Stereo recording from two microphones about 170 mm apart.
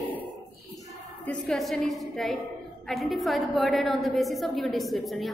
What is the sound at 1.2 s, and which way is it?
A woman's voice, 5° left (ahead or behind).